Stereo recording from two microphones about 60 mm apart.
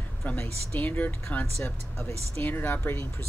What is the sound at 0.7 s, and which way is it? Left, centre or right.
Speech, left.